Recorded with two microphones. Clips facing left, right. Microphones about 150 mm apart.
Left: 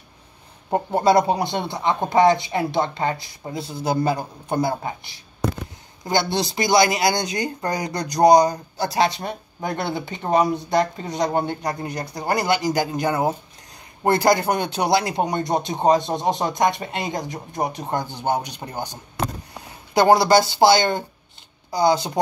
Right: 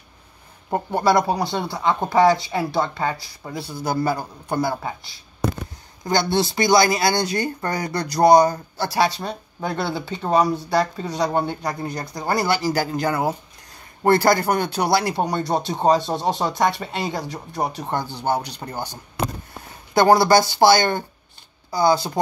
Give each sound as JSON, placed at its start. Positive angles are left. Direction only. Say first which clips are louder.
{"t": 0.7, "sound": "a man's voice", "louder": "left 1 dB", "side_deg": 25}